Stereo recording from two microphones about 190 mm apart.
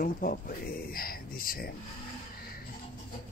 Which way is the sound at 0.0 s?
50° left (ahead or behind).